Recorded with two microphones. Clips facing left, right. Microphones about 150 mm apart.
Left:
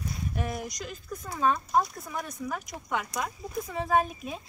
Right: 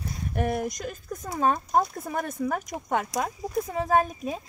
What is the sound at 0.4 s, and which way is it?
A woman's voice, 55° right (ahead or behind).